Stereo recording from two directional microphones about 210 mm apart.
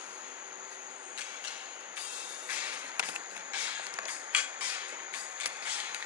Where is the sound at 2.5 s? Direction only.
10° right (ahead or behind).